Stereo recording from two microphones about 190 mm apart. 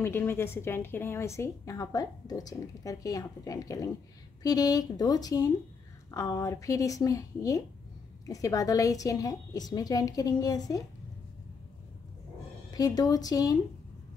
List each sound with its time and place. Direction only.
0.0 s a woman's voice: 10° left (ahead or behind)
12.7 s a woman's voice: 20° left (ahead or behind)